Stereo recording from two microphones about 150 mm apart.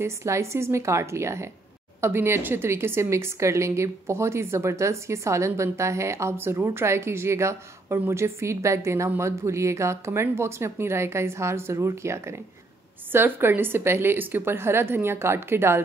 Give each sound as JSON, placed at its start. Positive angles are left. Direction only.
{"t": 0.0, "sound": "a woman's voice", "side_deg": -20}